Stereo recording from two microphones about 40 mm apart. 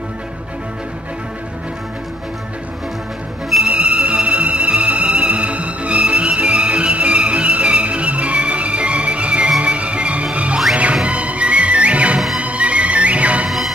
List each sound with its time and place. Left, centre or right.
3.6 s music: right